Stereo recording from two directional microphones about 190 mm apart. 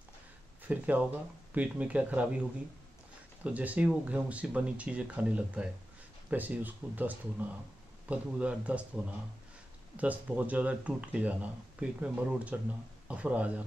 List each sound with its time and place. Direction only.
0.7 s speech: 10° right (ahead or behind)
3.4 s speech: 10° right (ahead or behind)